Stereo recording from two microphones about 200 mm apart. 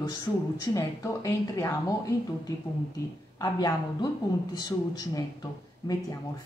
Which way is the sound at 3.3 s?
20° left (ahead or behind).